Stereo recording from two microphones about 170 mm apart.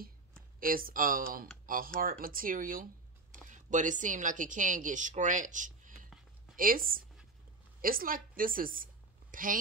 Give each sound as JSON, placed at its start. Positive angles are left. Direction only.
{"t": 0.6, "sound": "a woman's voice", "side_deg": -55}